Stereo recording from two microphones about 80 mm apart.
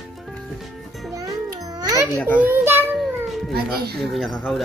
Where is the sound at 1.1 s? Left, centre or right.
Right.